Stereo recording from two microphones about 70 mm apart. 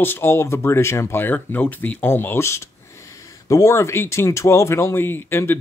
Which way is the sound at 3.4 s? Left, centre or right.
Left.